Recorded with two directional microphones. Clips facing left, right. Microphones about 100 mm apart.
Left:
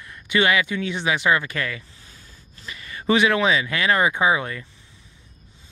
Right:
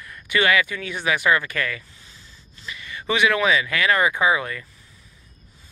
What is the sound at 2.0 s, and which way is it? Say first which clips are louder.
Speech: even; 40° left (ahead or behind).